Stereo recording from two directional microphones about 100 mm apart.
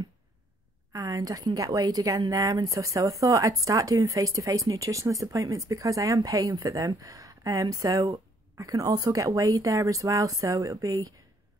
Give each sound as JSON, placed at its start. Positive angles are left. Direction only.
{"t": 0.9, "sound": "a woman's voice", "side_deg": -35}